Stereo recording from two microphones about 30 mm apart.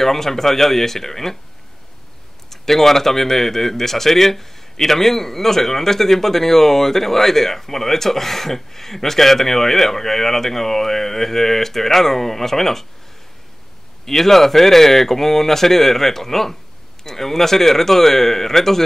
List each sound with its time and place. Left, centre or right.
0.0 s speech: centre
2.5 s speech: centre
14.0 s speech: centre